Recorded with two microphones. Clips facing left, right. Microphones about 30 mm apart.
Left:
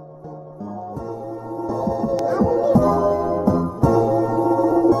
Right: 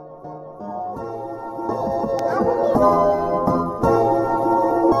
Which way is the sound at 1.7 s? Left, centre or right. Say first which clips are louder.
Even; centre.